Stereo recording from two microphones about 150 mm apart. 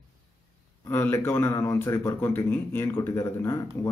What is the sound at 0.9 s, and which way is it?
Speech, 15° left (ahead or behind).